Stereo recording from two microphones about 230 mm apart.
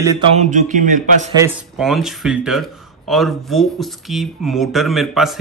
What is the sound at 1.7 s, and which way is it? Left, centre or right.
Speech, centre.